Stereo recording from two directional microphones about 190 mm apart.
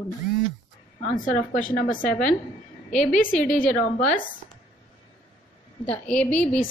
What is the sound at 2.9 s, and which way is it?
Speech, 40° left (ahead or behind).